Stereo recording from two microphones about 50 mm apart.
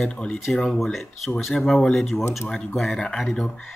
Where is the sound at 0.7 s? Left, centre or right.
Centre.